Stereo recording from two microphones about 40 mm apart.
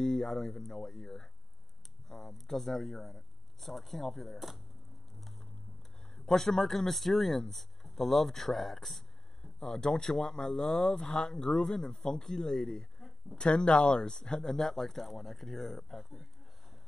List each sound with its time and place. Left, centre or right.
0.0 s speech: centre
6.1 s speech: centre
9.6 s speech: centre
13.4 s speech: left; by 16.3 s centre